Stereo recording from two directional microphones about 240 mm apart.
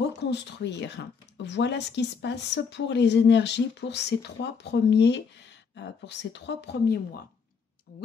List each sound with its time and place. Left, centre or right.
0.2 s speech: left